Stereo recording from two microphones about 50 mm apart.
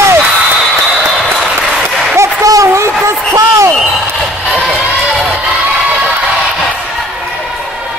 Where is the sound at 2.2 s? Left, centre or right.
Right.